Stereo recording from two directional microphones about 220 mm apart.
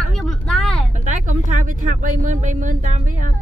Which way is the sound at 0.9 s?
35° right (ahead or behind).